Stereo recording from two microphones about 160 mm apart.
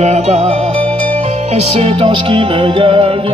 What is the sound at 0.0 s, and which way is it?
Music, 45° right (ahead or behind).